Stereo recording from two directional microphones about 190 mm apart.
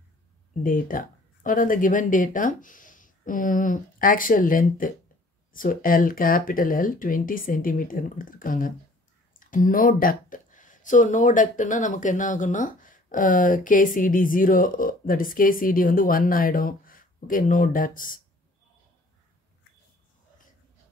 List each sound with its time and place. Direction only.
0.7 s speech: 45° left (ahead or behind)